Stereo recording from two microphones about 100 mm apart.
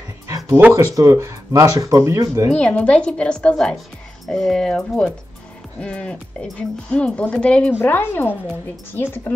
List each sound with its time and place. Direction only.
0.5 s speech: 15° right (ahead or behind)
0.9 s speech: 30° right (ahead or behind)
2.5 s speech: 10° left (ahead or behind)